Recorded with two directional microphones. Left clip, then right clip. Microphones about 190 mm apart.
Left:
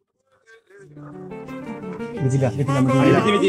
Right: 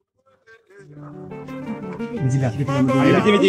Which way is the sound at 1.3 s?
Centre (ahead or behind).